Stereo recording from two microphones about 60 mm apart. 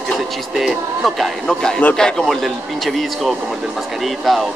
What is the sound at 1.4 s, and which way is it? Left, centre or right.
A man's voice, centre.